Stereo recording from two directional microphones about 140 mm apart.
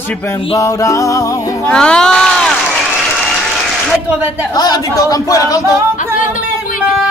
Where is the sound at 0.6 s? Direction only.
25° left (ahead or behind).